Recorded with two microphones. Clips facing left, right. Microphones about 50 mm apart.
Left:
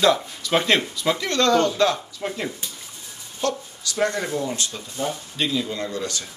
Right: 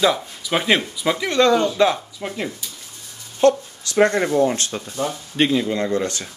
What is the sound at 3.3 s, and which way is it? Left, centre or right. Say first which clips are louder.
Speech: right 10 dB; right.